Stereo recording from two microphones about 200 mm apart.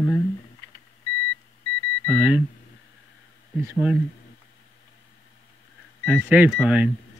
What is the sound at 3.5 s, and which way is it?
Speech, 10° right (ahead or behind).